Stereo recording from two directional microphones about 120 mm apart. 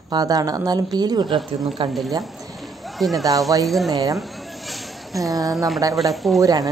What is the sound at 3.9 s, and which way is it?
Speech, 30° right (ahead or behind).